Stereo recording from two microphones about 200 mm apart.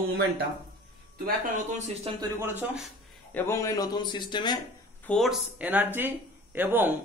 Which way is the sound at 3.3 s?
10° left (ahead or behind).